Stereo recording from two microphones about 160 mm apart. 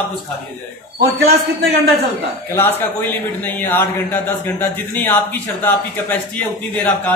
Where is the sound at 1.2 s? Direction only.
90° right.